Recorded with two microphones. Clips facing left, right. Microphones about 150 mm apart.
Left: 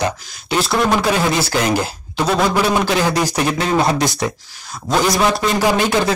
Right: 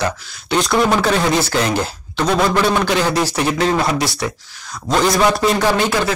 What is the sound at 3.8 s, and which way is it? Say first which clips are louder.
Speech: left 2 dB; 20° left (ahead or behind).